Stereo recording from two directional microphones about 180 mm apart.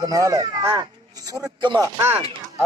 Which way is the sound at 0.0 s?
20° right (ahead or behind).